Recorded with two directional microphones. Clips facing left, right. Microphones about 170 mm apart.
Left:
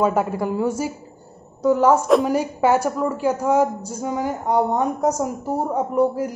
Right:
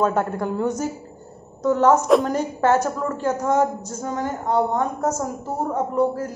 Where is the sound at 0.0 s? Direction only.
10° left (ahead or behind).